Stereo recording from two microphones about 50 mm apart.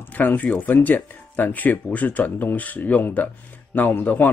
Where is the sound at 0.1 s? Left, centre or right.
Left.